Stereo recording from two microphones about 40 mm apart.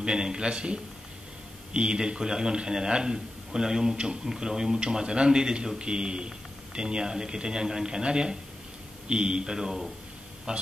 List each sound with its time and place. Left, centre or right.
0.0 s a man's voice: centre
10.5 s a man's voice: right